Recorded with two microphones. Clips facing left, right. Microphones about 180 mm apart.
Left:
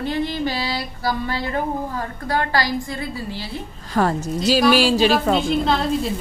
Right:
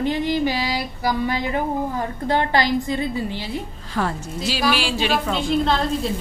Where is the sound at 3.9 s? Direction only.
45° left (ahead or behind).